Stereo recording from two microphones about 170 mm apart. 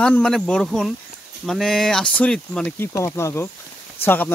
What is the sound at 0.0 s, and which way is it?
Speech, 5° left (ahead or behind).